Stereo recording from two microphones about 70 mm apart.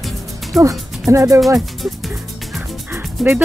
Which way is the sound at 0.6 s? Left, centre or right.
Right.